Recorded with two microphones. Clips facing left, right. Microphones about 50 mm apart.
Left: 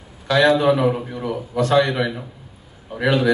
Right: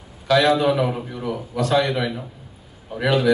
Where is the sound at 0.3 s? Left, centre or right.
Left.